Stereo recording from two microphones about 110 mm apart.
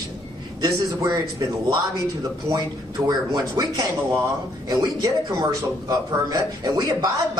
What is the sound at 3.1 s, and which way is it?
A man's voice, 40° right (ahead or behind).